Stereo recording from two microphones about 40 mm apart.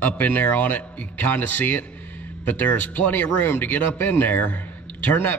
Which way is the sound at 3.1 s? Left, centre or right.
Left.